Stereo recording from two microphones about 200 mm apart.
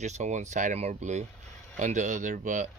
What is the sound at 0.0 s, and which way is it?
Speech, 35° right (ahead or behind).